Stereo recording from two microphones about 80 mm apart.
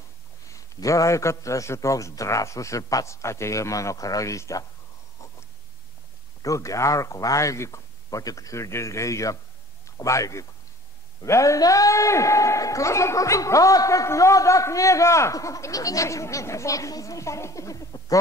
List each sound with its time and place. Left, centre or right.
0.5 s a man's voice: left
6.4 s a man's voice: left